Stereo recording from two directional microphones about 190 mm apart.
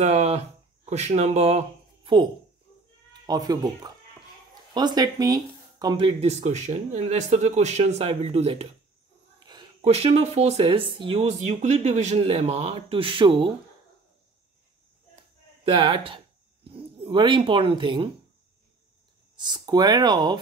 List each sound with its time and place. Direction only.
0.0 s speech: 35° right (ahead or behind)
3.1 s speech: 20° right (ahead or behind)
9.8 s speech: 35° right (ahead or behind)
15.6 s speech: 25° right (ahead or behind)
19.3 s speech: 25° right (ahead or behind)